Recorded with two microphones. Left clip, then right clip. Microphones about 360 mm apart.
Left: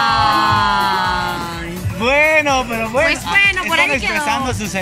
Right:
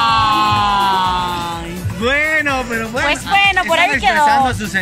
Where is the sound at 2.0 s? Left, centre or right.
Centre.